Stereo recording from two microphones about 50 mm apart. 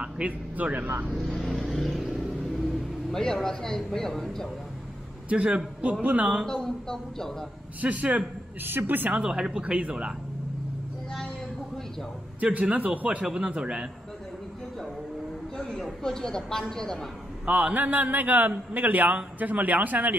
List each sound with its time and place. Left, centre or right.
0.0 s a man's voice: right
0.7 s a man's voice: right
1.1 s vehicle: centre
3.1 s a woman's voice: centre
5.3 s speech: right
6.4 s a woman's voice: centre
7.8 s speech: right
8.6 s speech: right
9.1 s speech: centre
12.4 s a man's voice: right
15.5 s a sound: centre
16.0 s a woman's voice: centre
17.5 s speech: right
17.7 s a man's voice: right